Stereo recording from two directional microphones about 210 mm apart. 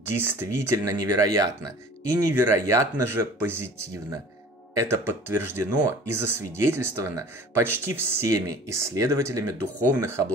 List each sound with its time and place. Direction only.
0.2 s speech: 10° right (ahead or behind)